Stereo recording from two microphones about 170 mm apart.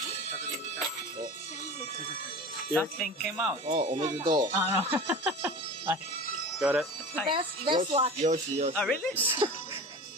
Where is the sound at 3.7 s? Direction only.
45° right (ahead or behind).